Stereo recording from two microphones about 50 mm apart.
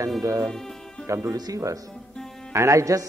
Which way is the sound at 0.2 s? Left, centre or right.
Right.